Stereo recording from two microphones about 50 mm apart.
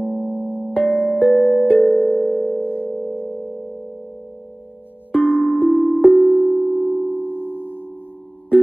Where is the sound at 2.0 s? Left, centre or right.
Centre.